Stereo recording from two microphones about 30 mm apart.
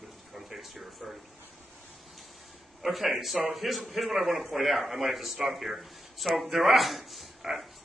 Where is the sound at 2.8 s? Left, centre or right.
Centre.